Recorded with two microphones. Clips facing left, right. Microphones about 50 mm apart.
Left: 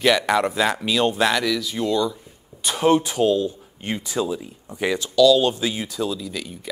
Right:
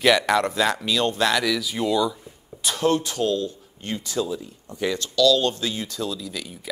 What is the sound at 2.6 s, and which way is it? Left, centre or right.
Speech, centre.